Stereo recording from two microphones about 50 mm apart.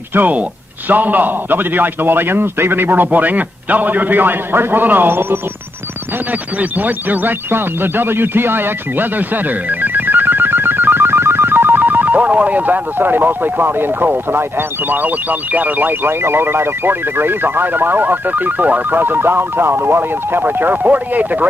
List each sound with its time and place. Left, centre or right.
0.1 s a man's voice: right
6.6 s a man's voice: right
7.5 s speech: right
9.8 s music: right
14.9 s speech: right